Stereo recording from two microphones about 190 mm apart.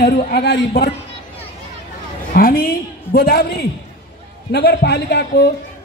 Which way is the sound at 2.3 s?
50° left (ahead or behind).